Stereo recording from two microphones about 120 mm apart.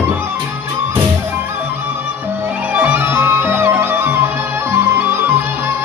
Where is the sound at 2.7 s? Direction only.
15° right (ahead or behind).